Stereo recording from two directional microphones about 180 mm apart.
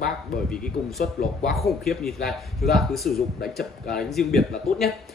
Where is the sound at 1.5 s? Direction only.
Centre (ahead or behind).